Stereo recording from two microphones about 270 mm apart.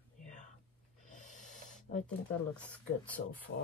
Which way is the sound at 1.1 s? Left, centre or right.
Left.